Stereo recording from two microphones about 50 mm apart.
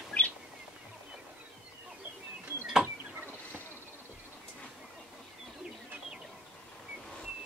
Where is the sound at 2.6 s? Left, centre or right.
Centre.